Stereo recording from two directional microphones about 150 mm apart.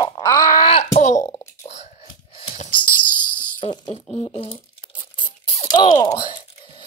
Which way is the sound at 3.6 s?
45° left (ahead or behind).